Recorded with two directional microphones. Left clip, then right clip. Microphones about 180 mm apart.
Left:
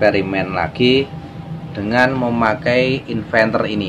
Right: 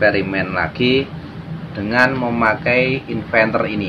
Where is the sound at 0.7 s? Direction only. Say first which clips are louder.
Left 3 dB; 75° left (ahead or behind).